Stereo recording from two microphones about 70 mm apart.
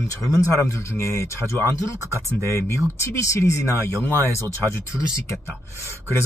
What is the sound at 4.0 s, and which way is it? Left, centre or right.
Speech, left.